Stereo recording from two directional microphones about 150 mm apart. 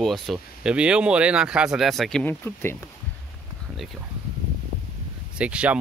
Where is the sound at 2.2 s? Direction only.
15° left (ahead or behind).